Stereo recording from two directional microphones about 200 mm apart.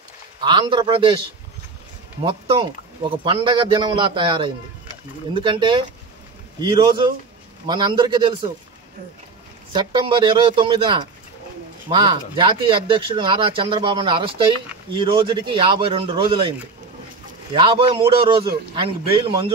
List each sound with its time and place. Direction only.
0.4 s speech: 20° right (ahead or behind)
2.2 s speech: 25° right (ahead or behind)
9.8 s speech: 25° right (ahead or behind)
17.6 s speech: 25° right (ahead or behind)